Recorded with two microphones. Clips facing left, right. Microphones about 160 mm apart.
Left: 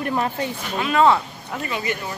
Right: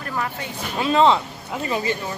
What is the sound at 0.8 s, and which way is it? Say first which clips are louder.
Speech: even; 25° right (ahead or behind).